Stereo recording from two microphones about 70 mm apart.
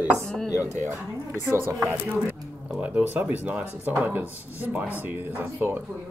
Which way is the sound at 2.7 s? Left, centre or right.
Centre.